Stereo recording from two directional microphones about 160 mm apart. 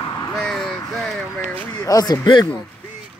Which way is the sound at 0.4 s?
5° left (ahead or behind).